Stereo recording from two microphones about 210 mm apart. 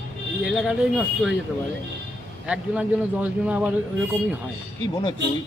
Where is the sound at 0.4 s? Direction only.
5° right (ahead or behind).